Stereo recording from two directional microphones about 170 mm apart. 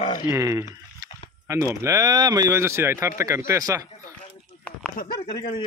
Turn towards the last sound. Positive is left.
turn(degrees=30)  # may be behind; listen again after turning